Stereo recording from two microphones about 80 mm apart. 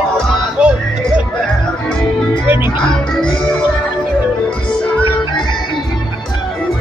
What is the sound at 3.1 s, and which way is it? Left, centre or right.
Music, centre.